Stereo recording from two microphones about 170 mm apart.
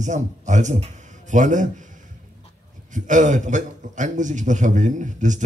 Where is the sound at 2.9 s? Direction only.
45° right (ahead or behind).